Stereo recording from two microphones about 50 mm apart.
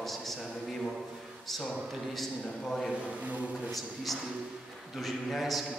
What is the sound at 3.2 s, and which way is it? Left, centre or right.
Speech, right.